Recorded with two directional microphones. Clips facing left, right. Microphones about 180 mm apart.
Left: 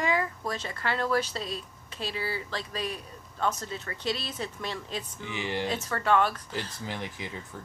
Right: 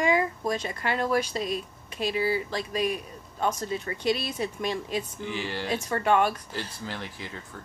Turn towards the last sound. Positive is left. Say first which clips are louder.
# even
turn(degrees=15)  # may be behind; listen again after turning